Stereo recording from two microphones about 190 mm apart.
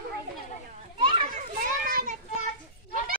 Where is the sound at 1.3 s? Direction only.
40° right (ahead or behind).